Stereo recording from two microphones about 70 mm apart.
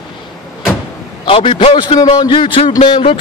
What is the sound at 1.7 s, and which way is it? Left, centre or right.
A man's voice, left.